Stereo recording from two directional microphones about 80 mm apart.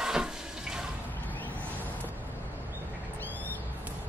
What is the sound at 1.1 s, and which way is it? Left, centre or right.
Vehicle, left.